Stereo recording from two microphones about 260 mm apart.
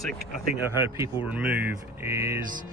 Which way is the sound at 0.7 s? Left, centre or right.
Centre.